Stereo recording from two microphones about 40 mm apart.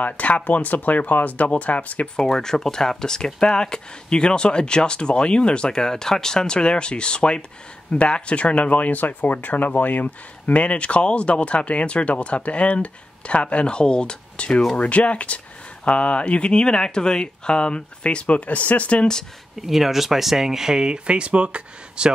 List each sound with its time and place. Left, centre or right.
0.0 s speech: left
2.1 s speech: centre; by 19.0 s left
19.6 s speech: centre; by 22.1 s right